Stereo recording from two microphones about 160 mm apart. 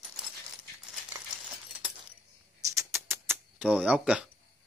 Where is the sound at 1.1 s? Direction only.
10° right (ahead or behind).